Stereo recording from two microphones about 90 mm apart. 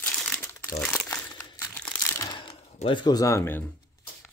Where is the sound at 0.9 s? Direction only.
30° left (ahead or behind).